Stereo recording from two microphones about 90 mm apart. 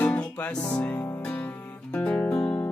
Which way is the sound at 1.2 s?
15° left (ahead or behind).